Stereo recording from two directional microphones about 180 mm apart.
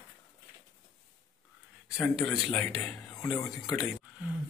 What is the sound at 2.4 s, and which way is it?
A man's voice, 25° left (ahead or behind).